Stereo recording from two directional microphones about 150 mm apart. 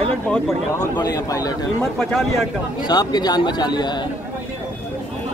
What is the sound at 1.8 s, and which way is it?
Speech, 5° left (ahead or behind).